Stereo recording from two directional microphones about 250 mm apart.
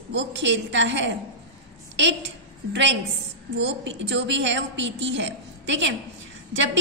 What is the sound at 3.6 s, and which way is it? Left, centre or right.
A woman's voice, right.